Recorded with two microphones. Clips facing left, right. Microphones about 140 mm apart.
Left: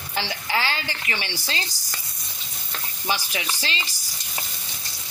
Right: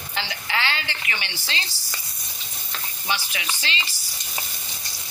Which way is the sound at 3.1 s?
40° left (ahead or behind).